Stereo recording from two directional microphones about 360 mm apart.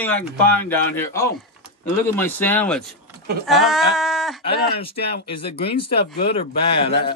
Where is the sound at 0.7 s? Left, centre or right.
Centre.